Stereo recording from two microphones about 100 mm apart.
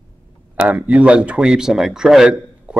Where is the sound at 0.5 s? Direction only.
15° right (ahead or behind).